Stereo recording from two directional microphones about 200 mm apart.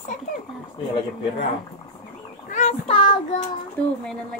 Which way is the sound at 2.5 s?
30° left (ahead or behind).